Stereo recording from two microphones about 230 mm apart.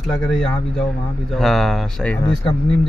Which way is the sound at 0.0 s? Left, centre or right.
Centre.